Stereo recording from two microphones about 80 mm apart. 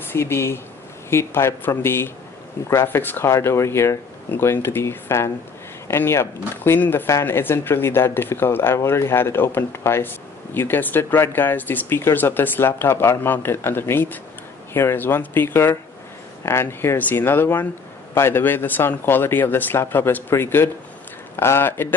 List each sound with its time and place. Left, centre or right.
0.1 s speech: left
3.3 s speech: left